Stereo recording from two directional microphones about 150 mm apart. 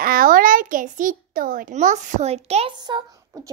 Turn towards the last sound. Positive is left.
turn(degrees=-30)  # may be behind; listen again after turning